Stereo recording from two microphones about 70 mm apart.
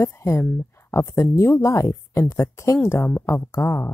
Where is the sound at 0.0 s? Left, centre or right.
Left.